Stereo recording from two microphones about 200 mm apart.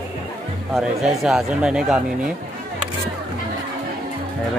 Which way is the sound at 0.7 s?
Centre (ahead or behind).